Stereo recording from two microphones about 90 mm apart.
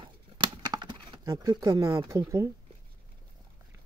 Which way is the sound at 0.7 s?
55° right (ahead or behind).